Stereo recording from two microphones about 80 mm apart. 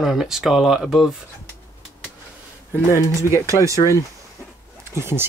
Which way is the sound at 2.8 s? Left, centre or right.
Left.